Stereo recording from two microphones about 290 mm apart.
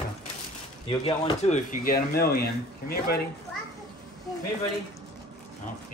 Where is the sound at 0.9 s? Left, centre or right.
Centre; by 3.2 s left.